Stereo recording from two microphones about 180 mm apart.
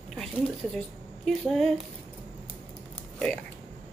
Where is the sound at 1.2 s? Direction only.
Centre (ahead or behind).